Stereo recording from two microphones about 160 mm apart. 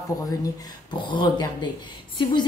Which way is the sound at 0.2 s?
20° left (ahead or behind).